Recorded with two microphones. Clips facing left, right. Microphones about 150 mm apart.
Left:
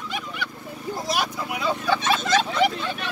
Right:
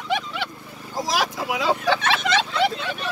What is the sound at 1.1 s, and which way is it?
Speech, 90° right.